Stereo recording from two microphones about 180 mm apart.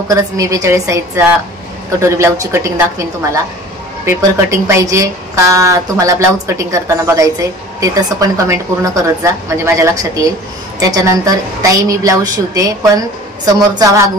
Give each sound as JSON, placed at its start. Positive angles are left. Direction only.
{"t": 0.1, "sound": "a woman's voice", "side_deg": -20}
{"t": 4.2, "sound": "a woman's voice", "side_deg": -15}